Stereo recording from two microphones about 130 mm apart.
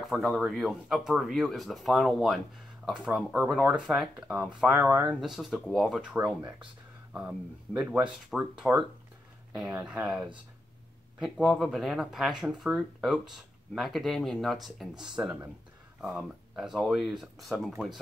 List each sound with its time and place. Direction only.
0.0 s speech: centre (ahead or behind)
5.2 s speech: centre (ahead or behind)
6.2 s speech: 35° right (ahead or behind)
7.1 s speech: 10° right (ahead or behind)